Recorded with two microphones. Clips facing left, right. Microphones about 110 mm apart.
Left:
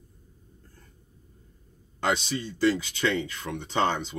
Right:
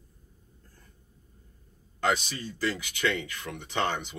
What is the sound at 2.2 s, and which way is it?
Speech, 25° left (ahead or behind).